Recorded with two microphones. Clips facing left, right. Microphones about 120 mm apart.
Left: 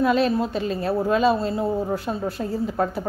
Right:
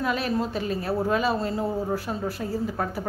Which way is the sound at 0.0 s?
25° left (ahead or behind).